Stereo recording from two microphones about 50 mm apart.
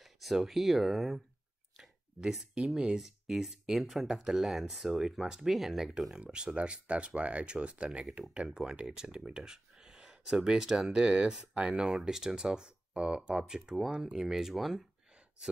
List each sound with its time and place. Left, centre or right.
0.0 s speech: centre
6.2 s speech: right; by 14.8 s centre